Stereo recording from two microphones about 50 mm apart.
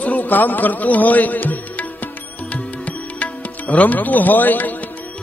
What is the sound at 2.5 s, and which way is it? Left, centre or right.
Music, left.